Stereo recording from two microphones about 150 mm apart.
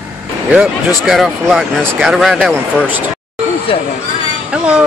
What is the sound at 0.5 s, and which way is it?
Speech, 5° right (ahead or behind).